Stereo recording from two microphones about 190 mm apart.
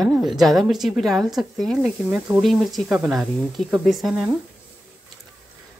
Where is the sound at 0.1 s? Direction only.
Centre (ahead or behind).